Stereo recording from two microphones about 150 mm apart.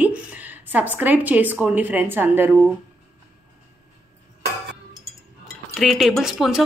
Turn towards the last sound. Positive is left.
turn(degrees=0)  # may be behind; listen again after turning